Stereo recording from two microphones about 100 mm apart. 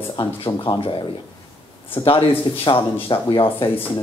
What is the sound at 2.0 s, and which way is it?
Speech, 65° left (ahead or behind).